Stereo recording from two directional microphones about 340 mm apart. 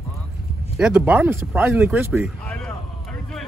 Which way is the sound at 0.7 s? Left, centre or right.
Centre.